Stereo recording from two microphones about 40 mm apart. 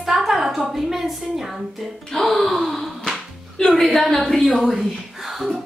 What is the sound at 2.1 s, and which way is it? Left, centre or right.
Speech, centre.